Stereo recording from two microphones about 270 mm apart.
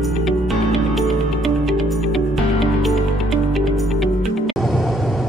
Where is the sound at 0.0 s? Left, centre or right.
Centre.